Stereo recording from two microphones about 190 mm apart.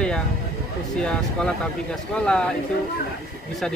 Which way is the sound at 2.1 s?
5° left (ahead or behind).